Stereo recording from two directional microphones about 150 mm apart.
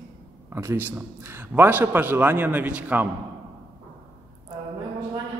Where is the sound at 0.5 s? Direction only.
15° right (ahead or behind).